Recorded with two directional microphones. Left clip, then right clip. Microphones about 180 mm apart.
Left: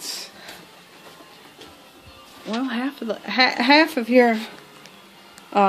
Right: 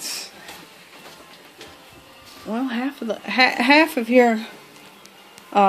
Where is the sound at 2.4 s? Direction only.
5° right (ahead or behind).